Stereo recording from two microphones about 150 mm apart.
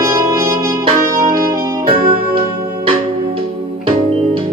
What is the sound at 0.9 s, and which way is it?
Music, 65° right (ahead or behind).